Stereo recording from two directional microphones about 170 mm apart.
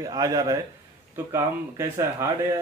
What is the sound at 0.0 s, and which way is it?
A man's voice, 20° right (ahead or behind).